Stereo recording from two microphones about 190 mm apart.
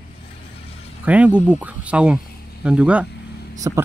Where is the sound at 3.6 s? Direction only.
20° right (ahead or behind).